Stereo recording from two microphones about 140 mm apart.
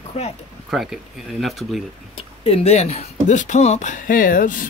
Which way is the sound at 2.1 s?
45° left (ahead or behind).